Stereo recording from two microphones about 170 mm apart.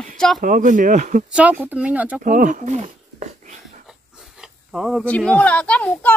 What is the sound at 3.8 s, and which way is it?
Speech, 5° right (ahead or behind).